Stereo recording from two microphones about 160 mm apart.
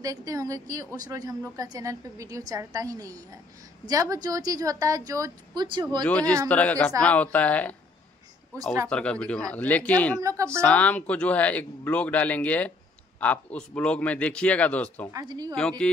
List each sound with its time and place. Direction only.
0.0 s a woman's voice: 20° right (ahead or behind)
6.0 s speech: 10° left (ahead or behind)
8.8 s speech: 5° left (ahead or behind)
10.2 s a woman's voice: 20° right (ahead or behind)
10.6 s speech: 10° left (ahead or behind)
15.1 s a woman's voice: 25° right (ahead or behind)